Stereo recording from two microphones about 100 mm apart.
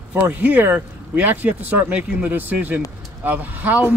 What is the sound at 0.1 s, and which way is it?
Speech, 15° right (ahead or behind).